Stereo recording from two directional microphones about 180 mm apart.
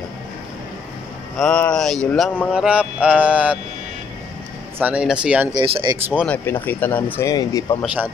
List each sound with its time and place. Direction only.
1.4 s mantra: 5° left (ahead or behind)
4.7 s speech: 10° right (ahead or behind)
5.5 s speech: 25° right (ahead or behind)
6.2 s speech: 10° left (ahead or behind)
7.8 s speech: 10° right (ahead or behind)